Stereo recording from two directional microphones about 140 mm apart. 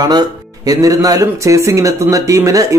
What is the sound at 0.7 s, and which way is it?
Speech, 25° right (ahead or behind).